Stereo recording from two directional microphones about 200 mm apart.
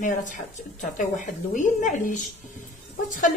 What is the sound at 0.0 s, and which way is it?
A woman's voice, 40° left (ahead or behind).